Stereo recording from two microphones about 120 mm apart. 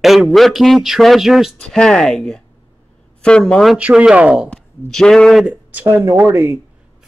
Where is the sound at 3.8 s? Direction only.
10° right (ahead or behind).